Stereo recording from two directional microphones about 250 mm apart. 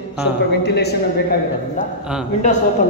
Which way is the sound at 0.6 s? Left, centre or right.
Left.